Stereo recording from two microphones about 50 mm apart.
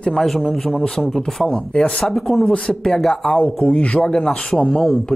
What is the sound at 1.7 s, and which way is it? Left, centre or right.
Speech, left.